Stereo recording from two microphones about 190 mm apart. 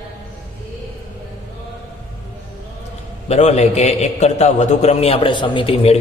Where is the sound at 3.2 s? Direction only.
35° left (ahead or behind).